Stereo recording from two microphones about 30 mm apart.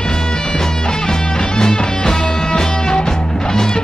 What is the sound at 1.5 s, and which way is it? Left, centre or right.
Music, left.